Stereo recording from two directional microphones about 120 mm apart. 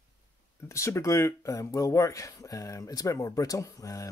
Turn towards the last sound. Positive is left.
turn(degrees=25)  # may be behind; listen again after turning